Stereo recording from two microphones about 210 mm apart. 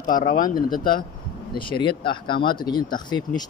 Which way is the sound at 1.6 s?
25° left (ahead or behind).